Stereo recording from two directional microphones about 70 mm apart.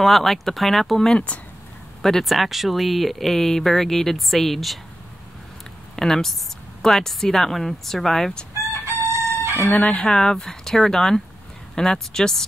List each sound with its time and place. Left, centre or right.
0.0 s speech: centre
5.9 s speech: centre
8.8 s chicken: right
9.7 s speech: centre